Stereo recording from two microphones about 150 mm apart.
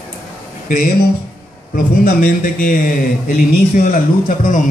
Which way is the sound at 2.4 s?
70° left (ahead or behind).